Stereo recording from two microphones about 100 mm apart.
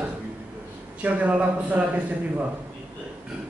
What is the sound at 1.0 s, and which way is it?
Speech, 15° right (ahead or behind).